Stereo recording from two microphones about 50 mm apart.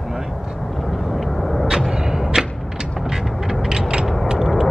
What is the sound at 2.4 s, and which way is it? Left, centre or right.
Creak, centre.